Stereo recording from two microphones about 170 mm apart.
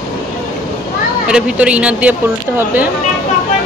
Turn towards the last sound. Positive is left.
turn(degrees=-5)  # may be behind; listen again after turning